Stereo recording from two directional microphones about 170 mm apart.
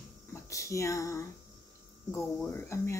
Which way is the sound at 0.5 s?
20° left (ahead or behind).